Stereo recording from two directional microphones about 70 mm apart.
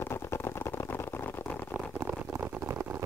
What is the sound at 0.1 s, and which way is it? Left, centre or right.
Vehicle, left.